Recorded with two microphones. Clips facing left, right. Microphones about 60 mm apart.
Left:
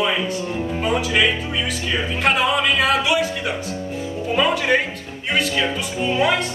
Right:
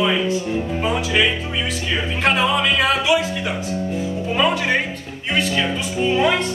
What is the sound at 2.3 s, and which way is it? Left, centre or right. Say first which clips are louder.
Music: even; centre.